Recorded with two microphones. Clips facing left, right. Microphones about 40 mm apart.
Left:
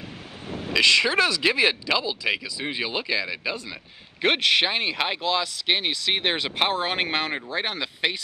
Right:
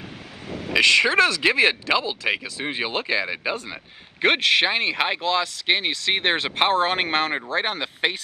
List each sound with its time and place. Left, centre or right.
0.5 s speech: right
4.9 s speech: centre
5.2 s speech: right